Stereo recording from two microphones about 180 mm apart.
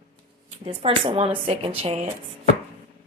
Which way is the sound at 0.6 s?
30° right (ahead or behind).